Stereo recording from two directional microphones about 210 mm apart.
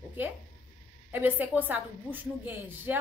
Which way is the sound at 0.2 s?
10° right (ahead or behind).